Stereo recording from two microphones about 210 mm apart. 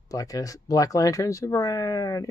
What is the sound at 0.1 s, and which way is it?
Speech, 15° left (ahead or behind).